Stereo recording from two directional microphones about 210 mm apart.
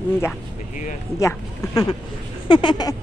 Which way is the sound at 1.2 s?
15° left (ahead or behind).